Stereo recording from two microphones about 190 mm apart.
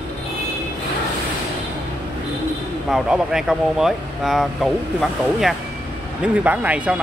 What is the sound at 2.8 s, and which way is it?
Speech, centre (ahead or behind).